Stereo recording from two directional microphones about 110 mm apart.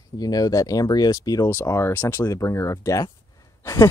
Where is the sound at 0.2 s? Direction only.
35° left (ahead or behind).